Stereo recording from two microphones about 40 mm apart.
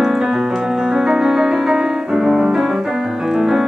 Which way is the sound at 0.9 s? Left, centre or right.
Centre.